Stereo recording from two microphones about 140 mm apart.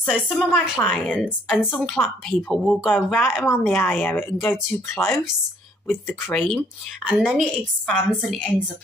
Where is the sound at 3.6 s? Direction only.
15° left (ahead or behind).